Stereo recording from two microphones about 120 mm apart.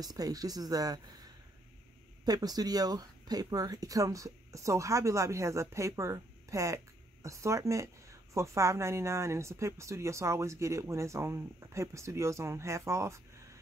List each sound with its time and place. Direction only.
0.0 s a woman's voice: 30° right (ahead or behind)